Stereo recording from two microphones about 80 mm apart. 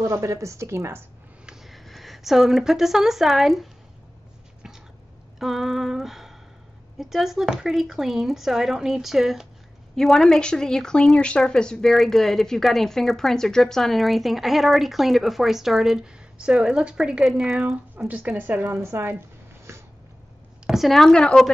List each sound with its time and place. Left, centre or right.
0.0 s speech: right
1.4 s speech: centre
5.4 s a woman's voice: centre
17.6 s speech: centre
18.8 s speech: right
20.6 s a woman's voice: centre